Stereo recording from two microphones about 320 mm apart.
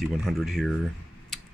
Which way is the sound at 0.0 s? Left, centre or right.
Centre.